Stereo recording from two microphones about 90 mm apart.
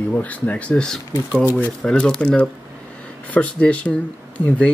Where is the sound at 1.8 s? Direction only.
10° left (ahead or behind).